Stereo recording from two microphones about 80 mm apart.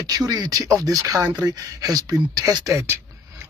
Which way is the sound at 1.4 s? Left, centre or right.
Right.